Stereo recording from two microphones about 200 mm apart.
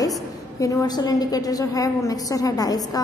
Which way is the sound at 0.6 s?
20° left (ahead or behind).